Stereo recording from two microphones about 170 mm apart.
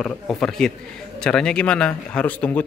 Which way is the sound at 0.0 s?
5° left (ahead or behind).